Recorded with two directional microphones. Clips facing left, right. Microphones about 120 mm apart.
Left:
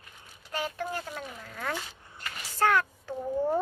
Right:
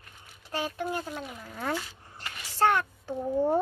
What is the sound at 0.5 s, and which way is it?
Child singing, 20° right (ahead or behind).